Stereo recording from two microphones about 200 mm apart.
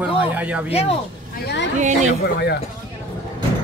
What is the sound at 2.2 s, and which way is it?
Speech, 55° left (ahead or behind).